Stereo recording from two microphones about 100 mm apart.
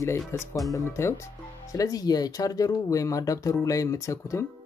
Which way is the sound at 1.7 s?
35° left (ahead or behind).